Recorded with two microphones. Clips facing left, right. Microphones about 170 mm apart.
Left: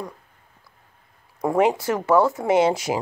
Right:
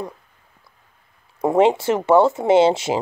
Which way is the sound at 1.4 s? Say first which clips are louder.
Right 4 dB; 25° right (ahead or behind).